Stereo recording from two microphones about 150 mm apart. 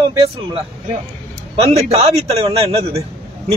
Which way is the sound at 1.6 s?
45° right (ahead or behind).